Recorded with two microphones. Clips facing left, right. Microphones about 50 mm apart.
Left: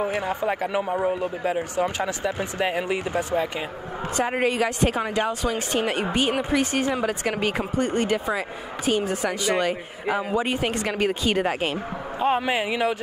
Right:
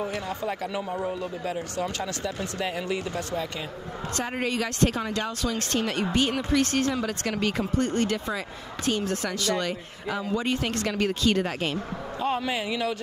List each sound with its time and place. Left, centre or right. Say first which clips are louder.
0.0 s speech: left 5 dB; left